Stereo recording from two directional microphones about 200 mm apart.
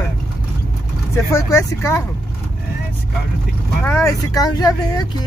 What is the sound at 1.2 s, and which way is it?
Speech, 15° left (ahead or behind).